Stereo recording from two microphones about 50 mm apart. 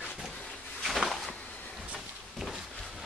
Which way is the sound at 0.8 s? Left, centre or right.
Centre.